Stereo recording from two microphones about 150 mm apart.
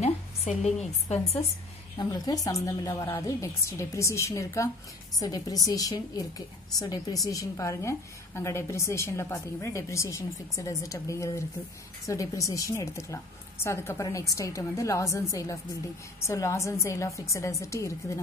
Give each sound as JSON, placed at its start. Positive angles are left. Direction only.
{"t": 0.0, "sound": "speech", "side_deg": 50}
{"t": 2.0, "sound": "a woman's voice", "side_deg": 25}